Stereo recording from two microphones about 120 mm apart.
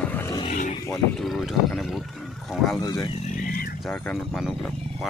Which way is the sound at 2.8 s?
35° left (ahead or behind).